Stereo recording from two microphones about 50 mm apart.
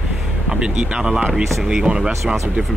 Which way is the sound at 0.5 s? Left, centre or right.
Right.